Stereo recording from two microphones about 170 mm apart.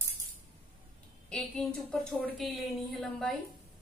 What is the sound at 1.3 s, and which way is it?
A woman's voice, 5° left (ahead or behind).